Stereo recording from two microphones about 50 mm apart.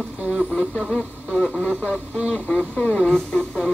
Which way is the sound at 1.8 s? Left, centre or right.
Left.